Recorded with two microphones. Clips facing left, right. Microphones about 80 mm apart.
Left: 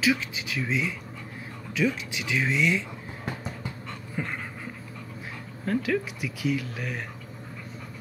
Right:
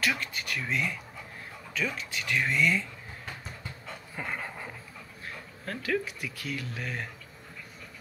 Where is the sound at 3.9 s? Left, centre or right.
Centre.